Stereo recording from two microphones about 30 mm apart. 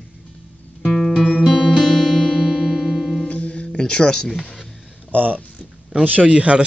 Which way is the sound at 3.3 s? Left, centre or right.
Left.